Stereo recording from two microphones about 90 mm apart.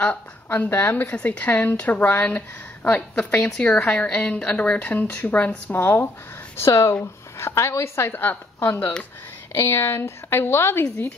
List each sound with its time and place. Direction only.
0.0 s a woman's voice: 15° left (ahead or behind)
3.3 s a woman's voice: 5° left (ahead or behind)
3.6 s a woman's voice: 15° left (ahead or behind)